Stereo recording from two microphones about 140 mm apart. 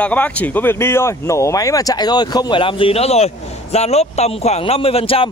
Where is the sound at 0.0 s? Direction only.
10° left (ahead or behind).